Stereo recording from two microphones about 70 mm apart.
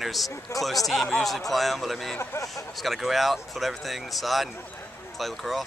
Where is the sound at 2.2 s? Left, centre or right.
Left.